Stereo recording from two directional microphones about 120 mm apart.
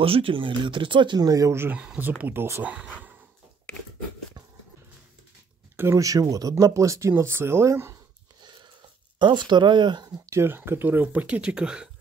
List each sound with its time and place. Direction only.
0.0 s speech: 50° right (ahead or behind); by 2.7 s 20° right (ahead or behind)
2.7 s speech: 10° right (ahead or behind)
5.8 s speech: 25° right (ahead or behind)
8.4 s wheeze: 40° right (ahead or behind)
9.2 s speech: 40° right (ahead or behind); by 11.9 s 5° right (ahead or behind)